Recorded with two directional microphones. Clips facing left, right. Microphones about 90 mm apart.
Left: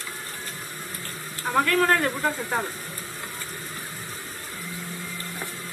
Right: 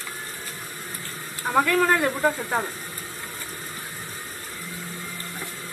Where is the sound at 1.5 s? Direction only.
5° right (ahead or behind).